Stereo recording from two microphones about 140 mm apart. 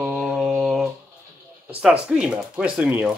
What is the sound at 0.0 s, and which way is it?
Mantra, 5° right (ahead or behind).